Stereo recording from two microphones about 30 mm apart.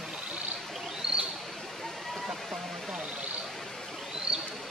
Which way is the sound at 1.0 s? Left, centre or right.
Right.